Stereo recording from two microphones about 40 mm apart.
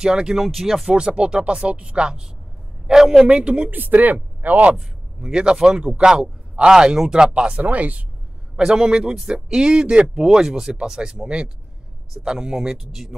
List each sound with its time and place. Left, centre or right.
0.0 s speech: centre
0.9 s a man's voice: right
3.3 s speech: right
3.7 s speech: right
5.2 s speech: right
7.6 s speech: right
8.5 s speech: centre